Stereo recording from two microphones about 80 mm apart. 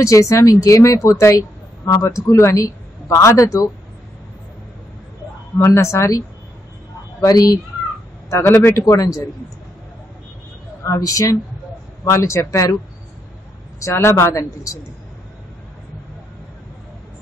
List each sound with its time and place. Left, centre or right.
0.0 s speech: left
5.7 s speech: left
8.3 s speech: left
10.8 s speech: left
13.7 s speech: left